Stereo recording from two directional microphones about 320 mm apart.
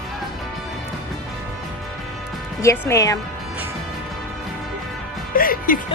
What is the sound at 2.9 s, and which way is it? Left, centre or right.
Speech, centre.